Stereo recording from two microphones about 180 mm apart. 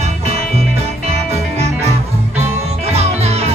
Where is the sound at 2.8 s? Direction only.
35° right (ahead or behind).